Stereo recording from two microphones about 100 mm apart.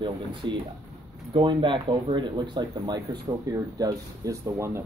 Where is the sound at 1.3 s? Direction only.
55° right (ahead or behind).